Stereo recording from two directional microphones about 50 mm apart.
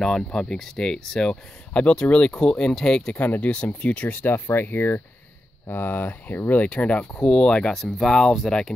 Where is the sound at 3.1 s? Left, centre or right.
Left.